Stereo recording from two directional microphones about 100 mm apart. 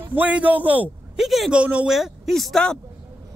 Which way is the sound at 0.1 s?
15° right (ahead or behind).